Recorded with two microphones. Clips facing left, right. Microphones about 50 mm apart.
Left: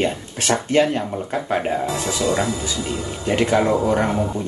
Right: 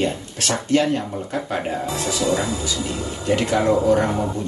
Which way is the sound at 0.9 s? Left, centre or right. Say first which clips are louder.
Even; centre.